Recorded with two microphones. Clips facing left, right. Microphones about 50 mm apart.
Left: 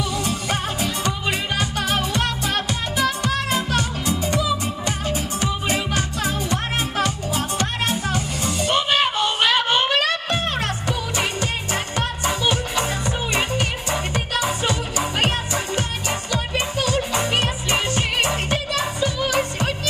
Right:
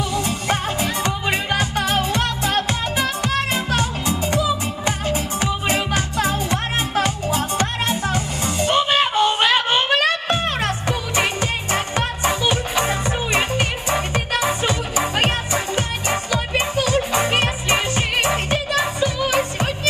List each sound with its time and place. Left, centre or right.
0.1 s music: right
3.7 s music: right
9.4 s child singing: right
10.6 s music: right